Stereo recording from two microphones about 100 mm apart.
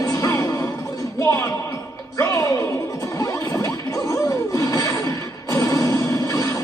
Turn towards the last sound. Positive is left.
turn(degrees=35)  # may be behind; listen again after turning